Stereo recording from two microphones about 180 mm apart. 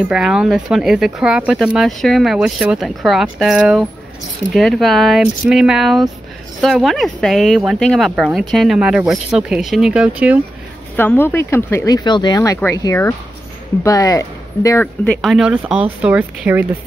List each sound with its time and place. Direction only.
0.1 s speech: 5° right (ahead or behind)
11.0 s speech: 10° left (ahead or behind)
15.2 s a woman's voice: 5° right (ahead or behind)